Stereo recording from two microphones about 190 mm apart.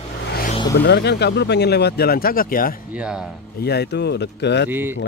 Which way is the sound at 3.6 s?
60° left (ahead or behind).